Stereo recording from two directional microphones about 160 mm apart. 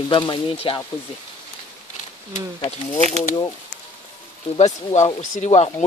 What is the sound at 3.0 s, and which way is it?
Speech, 45° right (ahead or behind).